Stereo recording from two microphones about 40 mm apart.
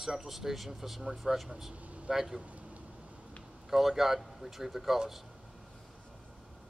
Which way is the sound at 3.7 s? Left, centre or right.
Centre.